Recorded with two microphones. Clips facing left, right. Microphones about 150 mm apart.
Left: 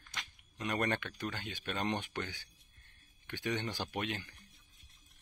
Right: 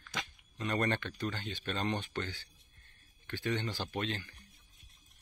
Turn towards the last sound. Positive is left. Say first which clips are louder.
# right 1 dB
turn(degrees=15)  # may be behind; listen again after turning